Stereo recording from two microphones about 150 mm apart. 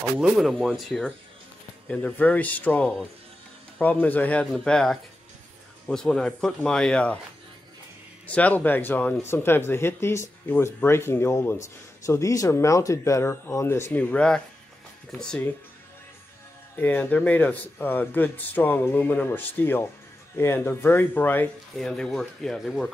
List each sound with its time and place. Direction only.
0.2 s speech: centre (ahead or behind)
8.3 s speech: 10° left (ahead or behind)
16.7 s speech: 10° left (ahead or behind)